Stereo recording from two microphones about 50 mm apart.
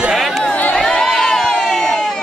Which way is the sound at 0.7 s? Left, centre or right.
Centre.